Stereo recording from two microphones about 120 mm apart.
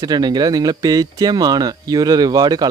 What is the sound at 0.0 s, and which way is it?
Speech, 35° right (ahead or behind).